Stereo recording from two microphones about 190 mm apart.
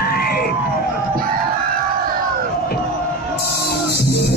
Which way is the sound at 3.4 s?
55° left (ahead or behind).